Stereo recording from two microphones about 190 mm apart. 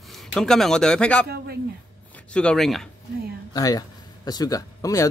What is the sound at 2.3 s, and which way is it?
Speech, 5° left (ahead or behind).